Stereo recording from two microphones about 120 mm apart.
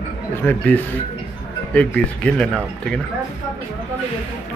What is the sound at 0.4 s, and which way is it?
Speech, 15° left (ahead or behind).